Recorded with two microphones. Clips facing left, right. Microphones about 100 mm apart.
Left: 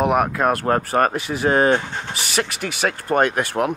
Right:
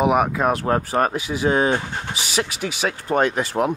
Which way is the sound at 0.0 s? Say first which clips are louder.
Even; centre (ahead or behind).